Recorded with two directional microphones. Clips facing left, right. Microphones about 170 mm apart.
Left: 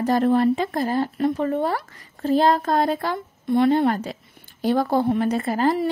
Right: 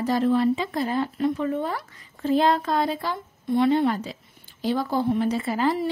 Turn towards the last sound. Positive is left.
turn(degrees=45)  # may be behind; listen again after turning